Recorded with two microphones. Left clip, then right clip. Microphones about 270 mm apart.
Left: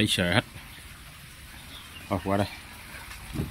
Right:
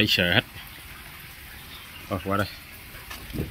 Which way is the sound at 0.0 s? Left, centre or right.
Centre.